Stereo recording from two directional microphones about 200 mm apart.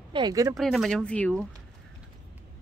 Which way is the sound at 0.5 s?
Centre (ahead or behind).